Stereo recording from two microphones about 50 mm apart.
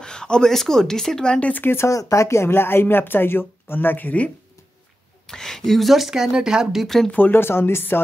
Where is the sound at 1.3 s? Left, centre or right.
Left.